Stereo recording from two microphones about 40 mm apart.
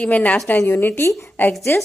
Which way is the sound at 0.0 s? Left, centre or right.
Left.